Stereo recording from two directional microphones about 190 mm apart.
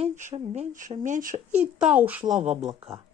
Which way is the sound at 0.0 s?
40° right (ahead or behind).